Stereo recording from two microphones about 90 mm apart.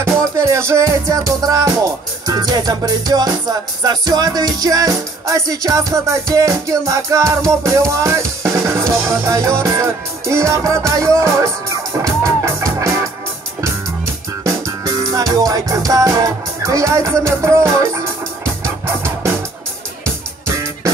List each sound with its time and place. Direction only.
0.0 s music: 30° right (ahead or behind)
8.8 s music: centre (ahead or behind)
9.2 s music: 30° right (ahead or behind)
14.4 s music: 40° right (ahead or behind)